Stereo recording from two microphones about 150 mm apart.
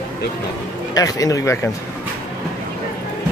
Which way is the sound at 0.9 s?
25° left (ahead or behind).